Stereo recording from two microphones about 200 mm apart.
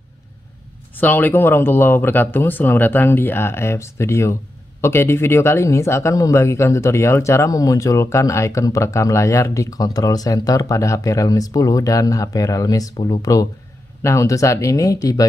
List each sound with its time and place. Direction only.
0.9 s speech: 10° left (ahead or behind)